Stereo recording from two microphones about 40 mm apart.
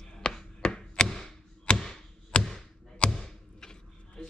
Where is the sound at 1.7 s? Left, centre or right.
Left.